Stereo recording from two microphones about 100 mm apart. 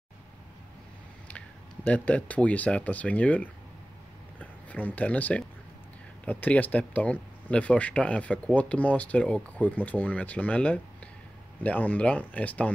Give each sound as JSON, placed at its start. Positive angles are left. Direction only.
{"t": 1.9, "sound": "speech", "side_deg": 15}